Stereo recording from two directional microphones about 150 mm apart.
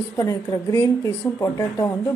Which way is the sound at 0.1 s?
20° left (ahead or behind).